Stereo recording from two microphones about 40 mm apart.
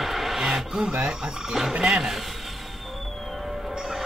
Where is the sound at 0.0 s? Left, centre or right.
Centre.